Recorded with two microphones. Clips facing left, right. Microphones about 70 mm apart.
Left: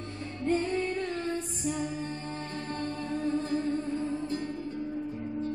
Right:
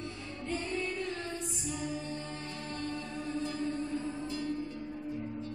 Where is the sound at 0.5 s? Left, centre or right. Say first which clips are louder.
Left 7 dB; left.